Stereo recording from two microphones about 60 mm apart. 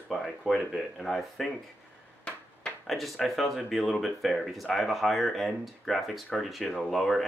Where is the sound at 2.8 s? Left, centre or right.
Centre.